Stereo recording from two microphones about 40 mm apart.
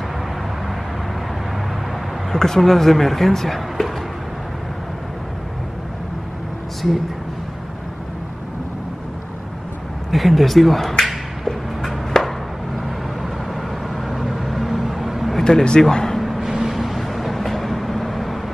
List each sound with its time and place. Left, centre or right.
2.3 s speech: centre
10.1 s a sound: centre
12.1 s chop: centre
14.0 s vehicle: centre
15.4 s speech: centre
16.2 s vehicle: centre